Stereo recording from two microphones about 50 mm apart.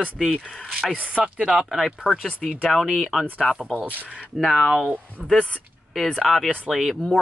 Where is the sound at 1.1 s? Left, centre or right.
Centre.